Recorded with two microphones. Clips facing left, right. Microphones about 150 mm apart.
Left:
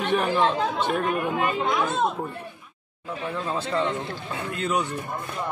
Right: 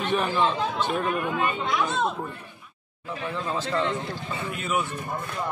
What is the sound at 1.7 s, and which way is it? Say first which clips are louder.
Speech: left 2 dB; 50° left (ahead or behind).